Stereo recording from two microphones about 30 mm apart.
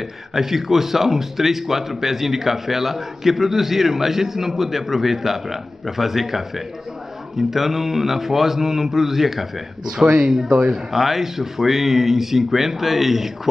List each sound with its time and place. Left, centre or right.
0.3 s speech: centre
7.5 s speech: centre
9.9 s speech: right
10.7 s speech: centre